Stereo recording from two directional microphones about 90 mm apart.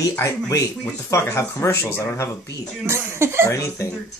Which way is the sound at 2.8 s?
30° right (ahead or behind).